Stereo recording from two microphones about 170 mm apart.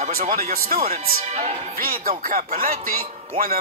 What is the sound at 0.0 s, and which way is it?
Speech, 50° right (ahead or behind).